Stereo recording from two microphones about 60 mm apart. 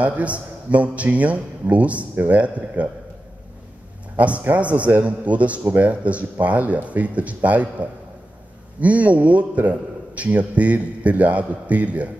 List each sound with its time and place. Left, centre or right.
0.0 s a man's voice: right
4.2 s a man's voice: right